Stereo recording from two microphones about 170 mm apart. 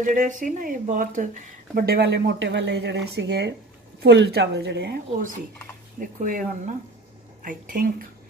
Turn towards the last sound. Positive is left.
turn(degrees=-55)  # may be behind; listen again after turning